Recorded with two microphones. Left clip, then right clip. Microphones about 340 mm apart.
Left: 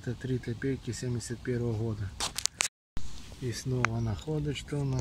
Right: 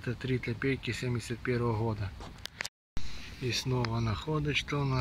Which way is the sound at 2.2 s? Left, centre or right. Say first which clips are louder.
Left 13 dB; left.